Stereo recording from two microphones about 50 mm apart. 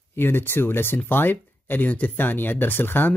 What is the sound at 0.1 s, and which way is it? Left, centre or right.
Speech, left.